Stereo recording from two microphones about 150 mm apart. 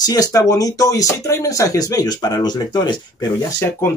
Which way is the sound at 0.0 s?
25° left (ahead or behind).